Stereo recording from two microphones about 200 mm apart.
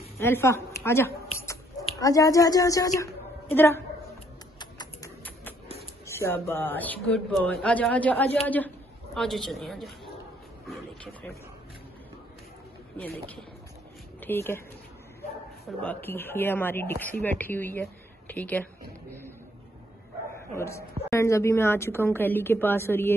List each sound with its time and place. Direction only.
0.2 s a woman's voice: 10° left (ahead or behind)
4.6 s typing: 20° left (ahead or behind)
6.0 s a woman's voice: 10° left (ahead or behind)
12.9 s speech: 5° left (ahead or behind)
15.8 s speech: 10° left (ahead or behind)
20.5 s speech: 15° left (ahead or behind)